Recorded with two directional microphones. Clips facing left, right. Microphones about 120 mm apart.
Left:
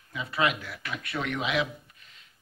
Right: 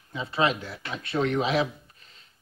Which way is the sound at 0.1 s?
30° right (ahead or behind).